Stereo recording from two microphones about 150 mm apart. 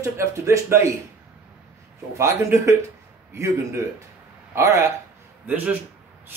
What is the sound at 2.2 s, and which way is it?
Speech, 20° right (ahead or behind).